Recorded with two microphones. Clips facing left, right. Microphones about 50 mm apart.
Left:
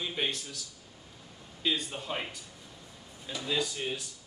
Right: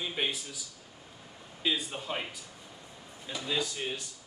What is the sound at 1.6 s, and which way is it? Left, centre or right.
A man's voice, centre.